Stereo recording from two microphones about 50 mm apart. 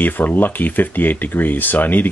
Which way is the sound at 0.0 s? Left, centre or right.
Left.